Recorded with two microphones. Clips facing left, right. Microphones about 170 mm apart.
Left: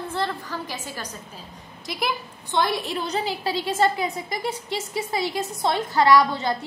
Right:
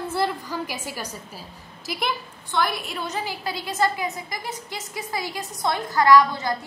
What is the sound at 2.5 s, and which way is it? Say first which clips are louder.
Speech: left 2 dB; 20° left (ahead or behind).